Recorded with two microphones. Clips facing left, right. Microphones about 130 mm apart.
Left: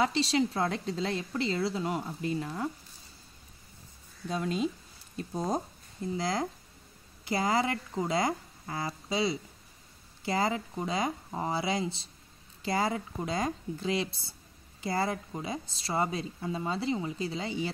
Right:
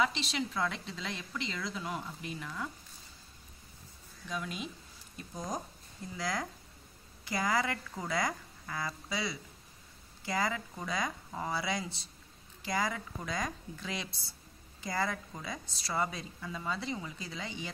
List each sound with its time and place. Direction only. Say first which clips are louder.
0.0 s a woman's voice: left 6 dB; 35° left (ahead or behind)
4.3 s a woman's voice: left 8 dB; 30° left (ahead or behind)